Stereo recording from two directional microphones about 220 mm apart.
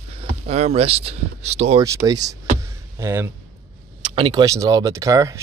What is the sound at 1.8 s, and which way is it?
Speech, 15° right (ahead or behind).